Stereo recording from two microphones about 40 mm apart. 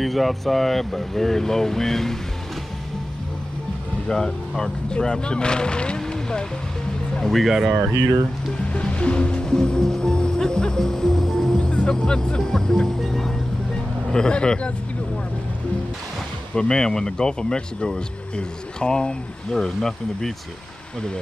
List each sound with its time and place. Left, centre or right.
0.0 s speech: centre
4.1 s speech: centre
5.9 s vehicle: centre
7.2 s speech: centre
8.6 s music: left; by 11.6 s centre
11.7 s speech: centre
13.7 s vehicle: left
16.5 s speech: centre